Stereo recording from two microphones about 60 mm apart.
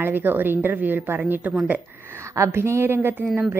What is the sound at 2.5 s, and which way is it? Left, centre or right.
Speech, right.